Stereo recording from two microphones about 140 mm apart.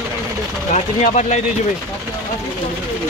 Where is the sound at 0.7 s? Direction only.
55° left (ahead or behind).